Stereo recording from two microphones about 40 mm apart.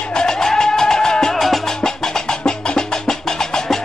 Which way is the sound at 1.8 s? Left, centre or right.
Centre.